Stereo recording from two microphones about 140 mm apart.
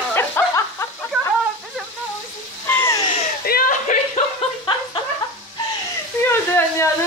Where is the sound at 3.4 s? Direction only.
85° left; by 4.2 s 60° left (ahead or behind).